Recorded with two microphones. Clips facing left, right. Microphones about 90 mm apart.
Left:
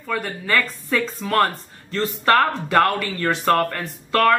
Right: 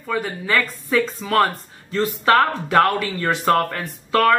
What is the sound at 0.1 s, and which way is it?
Speech, 5° right (ahead or behind).